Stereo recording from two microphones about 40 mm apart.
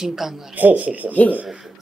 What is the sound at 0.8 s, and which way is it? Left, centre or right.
Hoot, right.